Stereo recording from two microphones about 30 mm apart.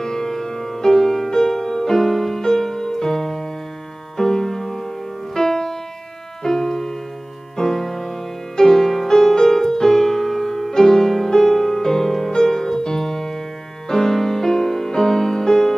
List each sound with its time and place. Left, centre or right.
0.0 s music: centre